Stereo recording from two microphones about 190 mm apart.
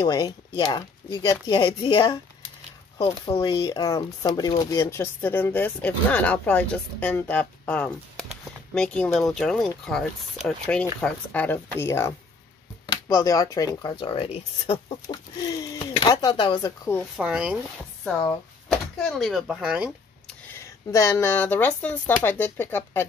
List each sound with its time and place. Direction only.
0.0 s speech: 20° left (ahead or behind)
3.3 s speech: 25° left (ahead or behind); by 7.9 s 5° left (ahead or behind)
8.3 s a sound: 5° left (ahead or behind)
9.3 s speech: 5° left (ahead or behind)
17.2 s speech: 5° right (ahead or behind)
19.0 s speech: centre (ahead or behind)
20.4 s speech: 15° left (ahead or behind)